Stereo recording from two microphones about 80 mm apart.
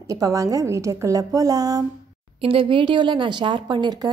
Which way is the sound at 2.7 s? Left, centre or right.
Right.